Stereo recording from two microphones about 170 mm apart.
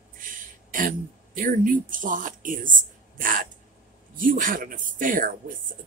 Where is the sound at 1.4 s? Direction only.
50° right (ahead or behind).